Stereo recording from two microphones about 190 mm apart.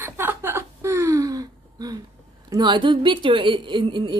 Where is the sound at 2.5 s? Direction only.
25° right (ahead or behind).